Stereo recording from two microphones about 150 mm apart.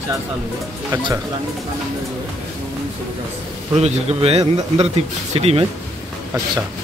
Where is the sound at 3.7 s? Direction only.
45° right (ahead or behind).